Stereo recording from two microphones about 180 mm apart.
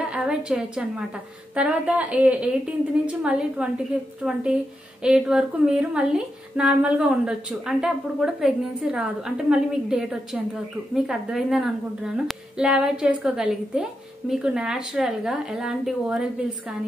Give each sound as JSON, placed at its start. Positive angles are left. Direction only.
{"t": 0.0, "sound": "a woman's voice", "side_deg": -5}